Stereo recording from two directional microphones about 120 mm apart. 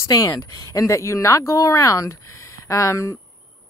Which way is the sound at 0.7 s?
25° left (ahead or behind).